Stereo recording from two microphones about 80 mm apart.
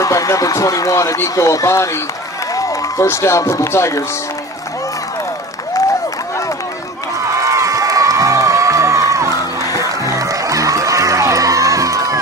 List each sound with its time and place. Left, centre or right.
0.0 s speech: left
7.2 s music: right